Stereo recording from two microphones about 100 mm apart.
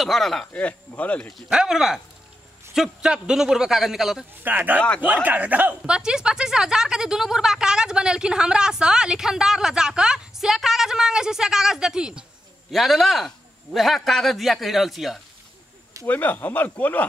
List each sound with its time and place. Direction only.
0.0 s a man's voice: centre (ahead or behind)
0.5 s speech: 15° left (ahead or behind)
1.5 s a man's voice: 5° right (ahead or behind)
4.4 s a man's voice: 20° right (ahead or behind); by 15.1 s centre (ahead or behind)
16.1 s speech: 20° left (ahead or behind)